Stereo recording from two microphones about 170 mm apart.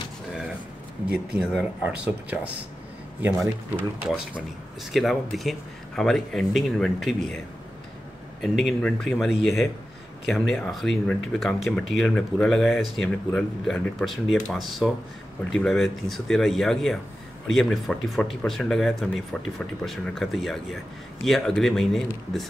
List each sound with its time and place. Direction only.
1.5 s speech: 5° right (ahead or behind)
4.9 s speech: centre (ahead or behind)
8.4 s speech: centre (ahead or behind)